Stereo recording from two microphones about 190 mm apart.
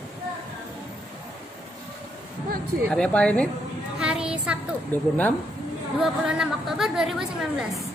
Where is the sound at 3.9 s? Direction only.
5° right (ahead or behind).